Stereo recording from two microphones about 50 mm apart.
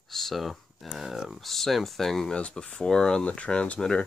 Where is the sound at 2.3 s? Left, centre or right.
Centre.